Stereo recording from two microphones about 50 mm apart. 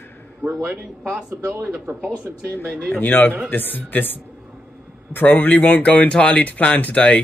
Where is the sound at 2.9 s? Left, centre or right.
Left.